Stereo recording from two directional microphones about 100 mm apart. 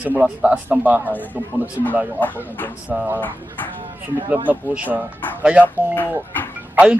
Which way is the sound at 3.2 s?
15° left (ahead or behind).